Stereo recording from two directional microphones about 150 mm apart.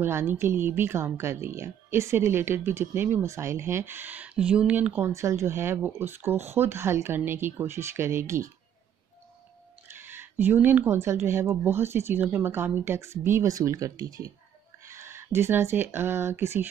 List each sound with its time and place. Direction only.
0.0 s speech: 15° right (ahead or behind)
9.8 s speech: 15° right (ahead or behind)